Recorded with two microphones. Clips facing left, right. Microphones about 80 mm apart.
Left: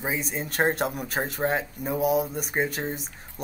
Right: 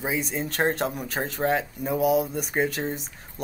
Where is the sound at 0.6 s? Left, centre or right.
Centre.